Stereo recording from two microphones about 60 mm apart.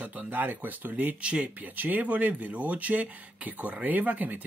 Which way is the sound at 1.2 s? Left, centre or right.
Centre.